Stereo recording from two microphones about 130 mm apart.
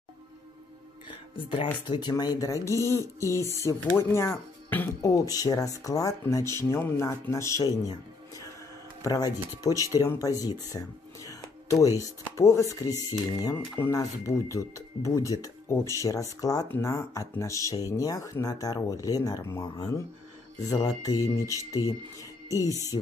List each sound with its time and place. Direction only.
1.9 s speech: 35° left (ahead or behind)
11.2 s music: 25° left (ahead or behind)
12.0 s speech: 25° left (ahead or behind)